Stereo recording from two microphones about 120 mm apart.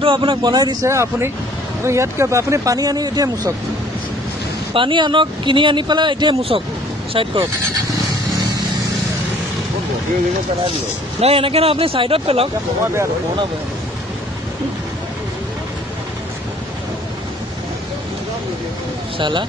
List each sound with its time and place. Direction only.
0.0 s speech: 40° right (ahead or behind)
4.7 s speech: 40° right (ahead or behind)
11.1 s speech: 55° right (ahead or behind)
12.8 s speech: 25° right (ahead or behind)
19.1 s speech: 40° right (ahead or behind)